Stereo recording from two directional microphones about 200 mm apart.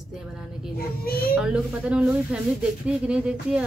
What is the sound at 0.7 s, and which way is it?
Speech, 50° left (ahead or behind).